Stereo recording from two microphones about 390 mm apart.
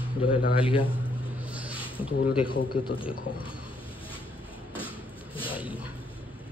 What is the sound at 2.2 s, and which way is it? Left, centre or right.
Speech, left.